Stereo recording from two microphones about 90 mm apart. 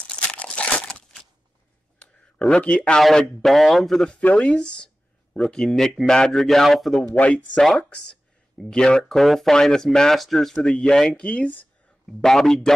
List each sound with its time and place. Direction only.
0.1 s crumpling: 10° left (ahead or behind)
2.0 s a sound: 10° left (ahead or behind)
3.0 s speech: centre (ahead or behind)
12.1 s speech: 5° left (ahead or behind)